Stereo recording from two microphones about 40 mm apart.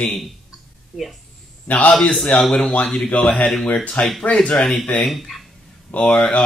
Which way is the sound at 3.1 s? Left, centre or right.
Left.